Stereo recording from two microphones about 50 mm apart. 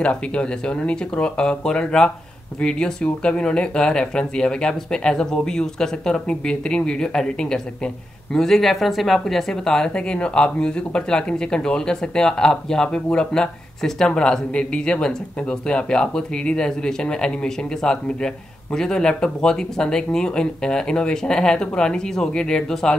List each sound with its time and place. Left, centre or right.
0.0 s speech: left; by 9.4 s centre
9.5 s speech: centre